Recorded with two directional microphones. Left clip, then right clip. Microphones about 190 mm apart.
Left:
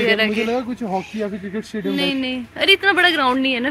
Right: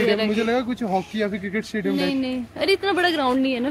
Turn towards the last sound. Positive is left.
turn(degrees=-5)  # may be behind; listen again after turning